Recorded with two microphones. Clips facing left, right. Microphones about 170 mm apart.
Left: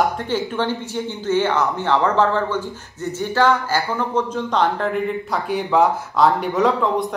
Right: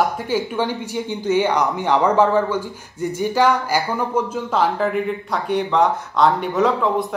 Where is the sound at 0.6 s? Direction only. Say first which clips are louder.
Even; 10° right (ahead or behind).